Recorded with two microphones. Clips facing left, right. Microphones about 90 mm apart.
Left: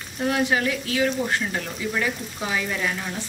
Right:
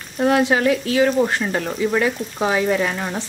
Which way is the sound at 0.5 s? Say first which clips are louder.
Right 6 dB; 45° right (ahead or behind).